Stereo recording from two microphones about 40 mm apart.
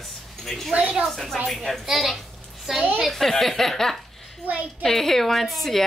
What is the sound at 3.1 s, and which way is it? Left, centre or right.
Speech, centre.